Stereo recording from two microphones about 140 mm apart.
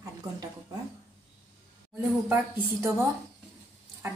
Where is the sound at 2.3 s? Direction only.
20° right (ahead or behind).